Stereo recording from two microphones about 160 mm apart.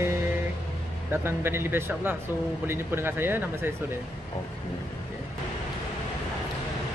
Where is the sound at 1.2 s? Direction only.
15° right (ahead or behind).